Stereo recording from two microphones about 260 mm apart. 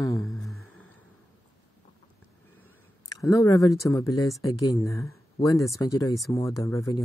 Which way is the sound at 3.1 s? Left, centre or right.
Centre.